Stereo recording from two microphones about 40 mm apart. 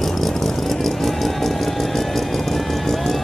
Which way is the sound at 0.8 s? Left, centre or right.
Centre.